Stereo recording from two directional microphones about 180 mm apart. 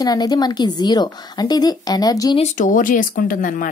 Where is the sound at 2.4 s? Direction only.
45° left (ahead or behind).